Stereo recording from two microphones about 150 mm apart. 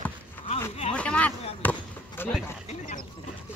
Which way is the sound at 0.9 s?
10° left (ahead or behind).